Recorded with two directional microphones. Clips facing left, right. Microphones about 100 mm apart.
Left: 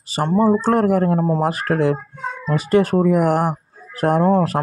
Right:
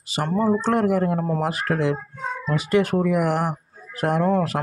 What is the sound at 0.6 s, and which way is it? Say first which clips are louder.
Speech: left 4 dB; 45° left (ahead or behind).